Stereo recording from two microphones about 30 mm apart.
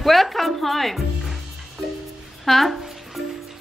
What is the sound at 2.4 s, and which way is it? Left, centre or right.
Speech, centre.